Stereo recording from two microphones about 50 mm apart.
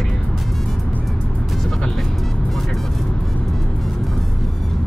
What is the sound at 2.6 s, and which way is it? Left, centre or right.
Vehicle, centre.